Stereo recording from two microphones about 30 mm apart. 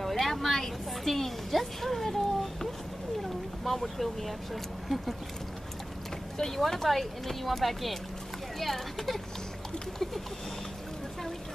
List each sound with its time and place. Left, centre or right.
0.1 s a sound: centre
4.8 s speech: centre
6.3 s speech: centre